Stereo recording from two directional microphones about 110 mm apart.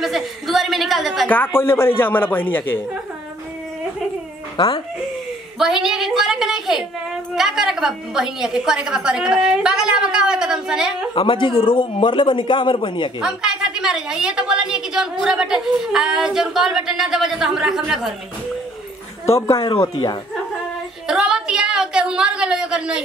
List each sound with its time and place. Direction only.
0.0 s a sound: centre (ahead or behind)
1.3 s speech: 20° left (ahead or behind)
4.6 s a man's voice: 45° left (ahead or behind)
5.6 s a woman's voice: 5° right (ahead or behind)
11.1 s a man's voice: 50° left (ahead or behind)
13.2 s a woman's voice: 5° right (ahead or behind)
19.3 s speech: 30° left (ahead or behind)
21.1 s a sound: 5° right (ahead or behind)